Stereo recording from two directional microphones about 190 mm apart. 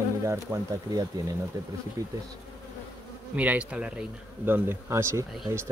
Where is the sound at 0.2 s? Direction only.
15° right (ahead or behind).